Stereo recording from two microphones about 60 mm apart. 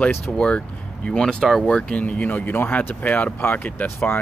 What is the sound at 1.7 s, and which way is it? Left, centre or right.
Speech, centre.